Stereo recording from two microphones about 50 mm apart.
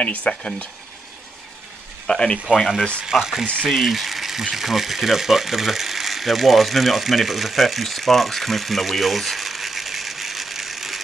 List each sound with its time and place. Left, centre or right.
0.0 s stir: left
2.0 s speech: centre
3.1 s speech: centre